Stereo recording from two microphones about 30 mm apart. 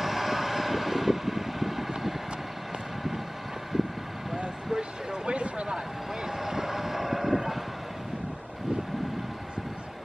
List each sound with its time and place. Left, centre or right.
0.0 s vehicle: centre
3.7 s vehicle: centre
4.4 s vehicle: right
5.3 s a sound: right
6.2 s vehicle: centre
7.3 s bow-wow: centre